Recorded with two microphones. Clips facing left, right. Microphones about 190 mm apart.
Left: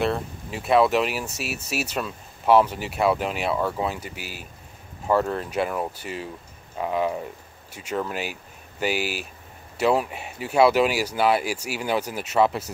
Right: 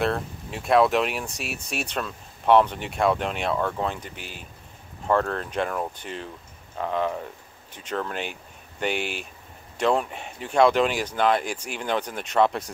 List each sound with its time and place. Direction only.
0.0 s speech: centre (ahead or behind)